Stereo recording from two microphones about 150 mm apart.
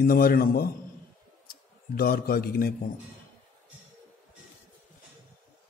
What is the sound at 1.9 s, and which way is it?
Speech, 90° left.